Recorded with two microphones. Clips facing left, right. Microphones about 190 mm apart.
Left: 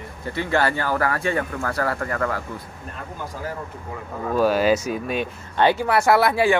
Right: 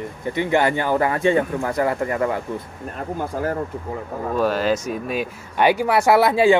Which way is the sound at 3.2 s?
50° right (ahead or behind).